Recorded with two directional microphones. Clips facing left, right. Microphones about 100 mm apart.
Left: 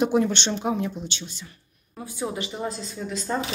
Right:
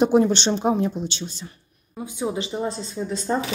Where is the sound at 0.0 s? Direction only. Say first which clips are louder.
Right 4 dB; 25° right (ahead or behind).